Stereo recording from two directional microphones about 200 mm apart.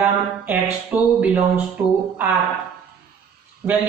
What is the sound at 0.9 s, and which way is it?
Speech, 10° right (ahead or behind).